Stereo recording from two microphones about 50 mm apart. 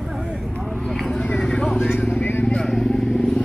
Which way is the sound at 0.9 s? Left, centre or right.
Centre.